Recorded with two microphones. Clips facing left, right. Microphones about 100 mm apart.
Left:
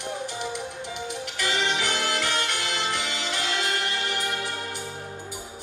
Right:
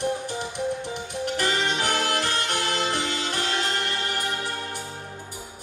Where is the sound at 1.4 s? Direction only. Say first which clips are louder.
Even; 45° right (ahead or behind).